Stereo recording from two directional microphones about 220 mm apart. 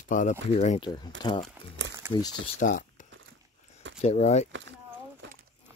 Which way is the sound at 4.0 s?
30° left (ahead or behind).